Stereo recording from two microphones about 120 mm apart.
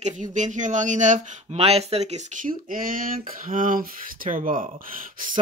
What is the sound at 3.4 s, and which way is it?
Speech, 90° right.